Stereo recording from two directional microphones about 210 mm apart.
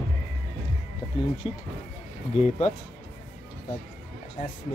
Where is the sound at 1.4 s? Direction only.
25° left (ahead or behind).